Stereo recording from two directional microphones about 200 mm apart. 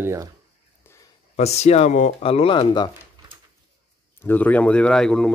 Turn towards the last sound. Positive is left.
turn(degrees=5)  # may be behind; listen again after turning